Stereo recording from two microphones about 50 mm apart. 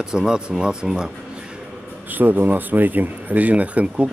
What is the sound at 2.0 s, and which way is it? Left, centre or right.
Speech, right.